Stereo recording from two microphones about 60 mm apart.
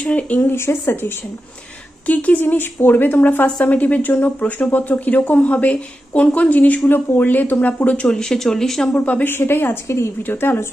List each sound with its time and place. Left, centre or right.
0.0 s speech: left
0.4 s speech: left
2.0 s speech: left
2.4 s speech: left; by 8.9 s centre
8.9 s speech: left
9.3 s speech: left